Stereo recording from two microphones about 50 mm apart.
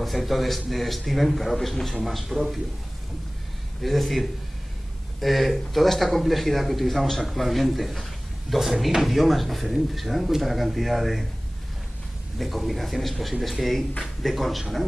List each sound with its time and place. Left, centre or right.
0.0 s speech: centre
3.8 s speech: centre
12.4 s speech: centre